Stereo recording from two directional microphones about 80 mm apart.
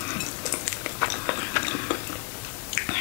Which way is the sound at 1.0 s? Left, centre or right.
Left.